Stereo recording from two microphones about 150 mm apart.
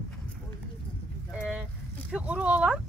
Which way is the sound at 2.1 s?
10° right (ahead or behind).